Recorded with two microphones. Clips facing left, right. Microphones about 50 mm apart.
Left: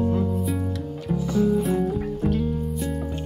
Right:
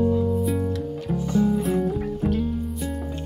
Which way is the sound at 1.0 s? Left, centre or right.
Centre.